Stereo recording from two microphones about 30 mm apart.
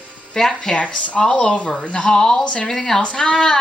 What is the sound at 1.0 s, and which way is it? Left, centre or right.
Speech, left.